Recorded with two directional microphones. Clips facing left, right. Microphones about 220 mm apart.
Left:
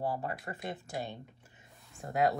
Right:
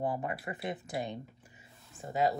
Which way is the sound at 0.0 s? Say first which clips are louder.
Right 1 dB; 15° right (ahead or behind).